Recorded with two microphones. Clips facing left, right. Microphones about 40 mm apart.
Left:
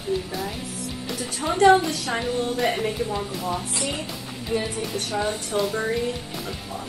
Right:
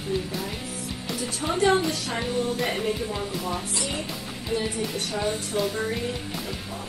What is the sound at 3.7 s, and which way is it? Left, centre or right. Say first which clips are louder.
Speech: left 1 dB; left.